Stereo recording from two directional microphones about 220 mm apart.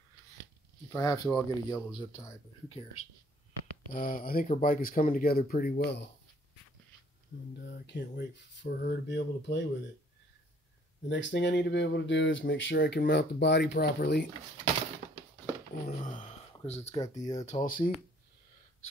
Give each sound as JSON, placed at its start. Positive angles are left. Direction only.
{"t": 0.9, "sound": "speech", "side_deg": 15}
{"t": 3.9, "sound": "speech", "side_deg": 40}
{"t": 7.6, "sound": "speech", "side_deg": 50}
{"t": 11.1, "sound": "speech", "side_deg": 55}
{"t": 15.9, "sound": "speech", "side_deg": 35}